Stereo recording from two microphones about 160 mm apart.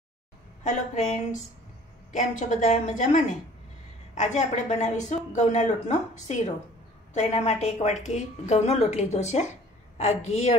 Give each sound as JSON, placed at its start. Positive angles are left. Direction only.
{"t": 0.7, "sound": "a woman's voice", "side_deg": 45}